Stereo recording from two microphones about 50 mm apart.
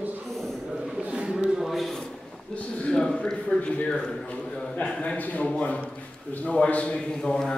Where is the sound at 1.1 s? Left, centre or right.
Right.